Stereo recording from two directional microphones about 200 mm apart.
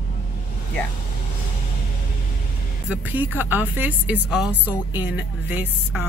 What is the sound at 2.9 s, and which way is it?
Speech, 10° right (ahead or behind).